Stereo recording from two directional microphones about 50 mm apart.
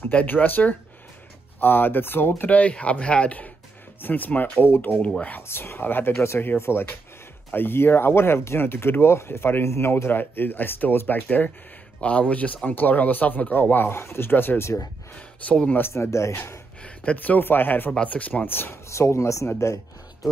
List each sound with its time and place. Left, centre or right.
0.1 s speech: left
2.7 s speech: left
4.0 s speech: left
12.0 s speech: left
13.9 s speech: left
15.1 s speech: left
15.9 s speech: left
16.8 s a sound: left
17.4 s speech: left
18.0 s speech: left
18.9 s speech: left